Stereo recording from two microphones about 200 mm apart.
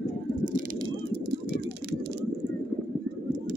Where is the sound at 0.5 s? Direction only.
40° right (ahead or behind).